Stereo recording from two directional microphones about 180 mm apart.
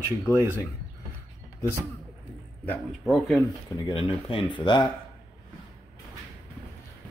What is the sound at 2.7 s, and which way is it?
Speech, centre (ahead or behind).